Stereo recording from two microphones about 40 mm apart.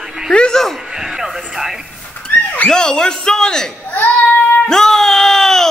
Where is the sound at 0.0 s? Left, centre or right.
Centre.